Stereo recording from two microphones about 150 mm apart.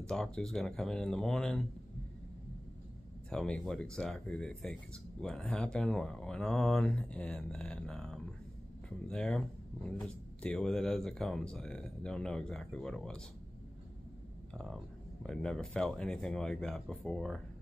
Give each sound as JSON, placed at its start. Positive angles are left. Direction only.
{"t": 0.0, "sound": "speech", "side_deg": 5}
{"t": 3.3, "sound": "speech", "side_deg": 5}
{"t": 14.5, "sound": "speech", "side_deg": 5}